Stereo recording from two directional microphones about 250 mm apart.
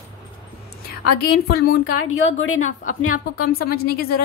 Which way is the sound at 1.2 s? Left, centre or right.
Left.